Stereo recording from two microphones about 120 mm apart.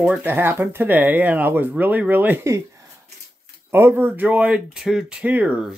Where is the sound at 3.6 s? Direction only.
20° right (ahead or behind).